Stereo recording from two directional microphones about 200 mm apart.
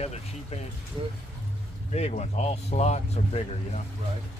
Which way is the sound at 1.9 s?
35° left (ahead or behind).